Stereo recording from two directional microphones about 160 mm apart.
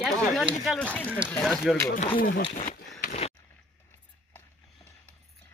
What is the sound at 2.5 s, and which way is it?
Speech, 50° left (ahead or behind).